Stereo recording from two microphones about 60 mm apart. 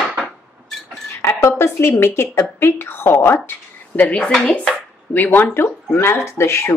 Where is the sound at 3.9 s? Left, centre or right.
Left.